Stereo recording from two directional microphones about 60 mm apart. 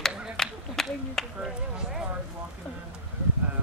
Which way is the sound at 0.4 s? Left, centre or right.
Centre.